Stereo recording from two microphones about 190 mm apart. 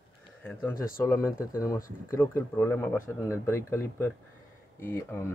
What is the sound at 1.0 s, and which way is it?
Speech, 15° left (ahead or behind).